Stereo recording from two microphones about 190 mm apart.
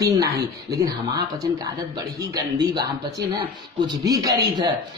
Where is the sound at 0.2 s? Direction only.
20° right (ahead or behind).